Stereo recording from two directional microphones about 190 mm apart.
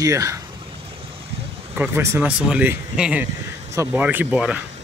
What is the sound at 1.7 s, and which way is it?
Speech, 10° right (ahead or behind).